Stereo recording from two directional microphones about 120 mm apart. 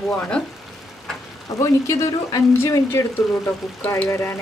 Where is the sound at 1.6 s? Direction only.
25° left (ahead or behind).